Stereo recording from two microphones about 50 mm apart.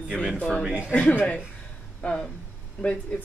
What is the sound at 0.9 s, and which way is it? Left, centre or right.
Speech, left.